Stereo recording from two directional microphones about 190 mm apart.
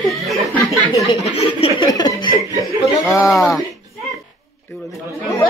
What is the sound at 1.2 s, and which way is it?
A man's voice, 30° left (ahead or behind).